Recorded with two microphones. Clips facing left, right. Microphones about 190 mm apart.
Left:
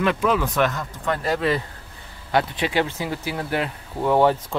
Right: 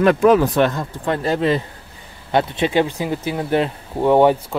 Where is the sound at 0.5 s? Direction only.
30° right (ahead or behind).